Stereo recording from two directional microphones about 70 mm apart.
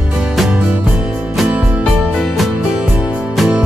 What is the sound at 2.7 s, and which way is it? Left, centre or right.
Music, centre.